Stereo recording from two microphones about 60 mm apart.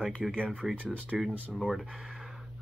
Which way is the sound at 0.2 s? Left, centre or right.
Centre.